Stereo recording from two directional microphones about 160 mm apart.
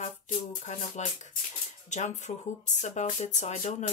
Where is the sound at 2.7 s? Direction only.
50° left (ahead or behind).